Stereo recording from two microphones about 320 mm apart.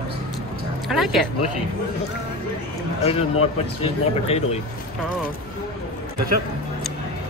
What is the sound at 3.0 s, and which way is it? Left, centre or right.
Speech, centre.